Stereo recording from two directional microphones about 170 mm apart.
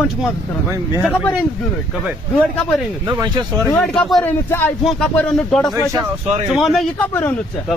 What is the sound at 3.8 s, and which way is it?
Speech, 5° left (ahead or behind).